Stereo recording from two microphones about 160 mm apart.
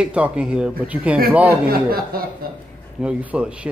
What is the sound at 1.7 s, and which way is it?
Speech, 70° right (ahead or behind).